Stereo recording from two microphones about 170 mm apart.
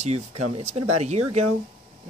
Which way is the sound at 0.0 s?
40° right (ahead or behind).